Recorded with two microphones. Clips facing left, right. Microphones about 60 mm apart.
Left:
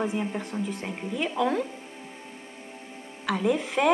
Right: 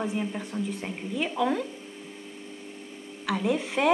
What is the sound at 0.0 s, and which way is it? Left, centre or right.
A woman's voice, centre.